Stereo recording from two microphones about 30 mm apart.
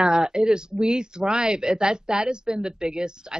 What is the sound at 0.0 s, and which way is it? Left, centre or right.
Speech, right.